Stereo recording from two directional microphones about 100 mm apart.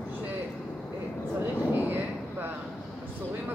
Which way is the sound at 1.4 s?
15° right (ahead or behind).